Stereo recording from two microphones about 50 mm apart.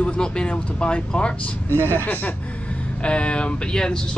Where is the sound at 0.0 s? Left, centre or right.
Centre.